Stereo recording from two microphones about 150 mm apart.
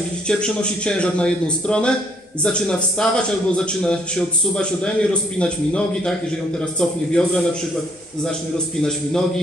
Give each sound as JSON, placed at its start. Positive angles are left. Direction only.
{"t": 0.3, "sound": "a man's voice", "side_deg": 5}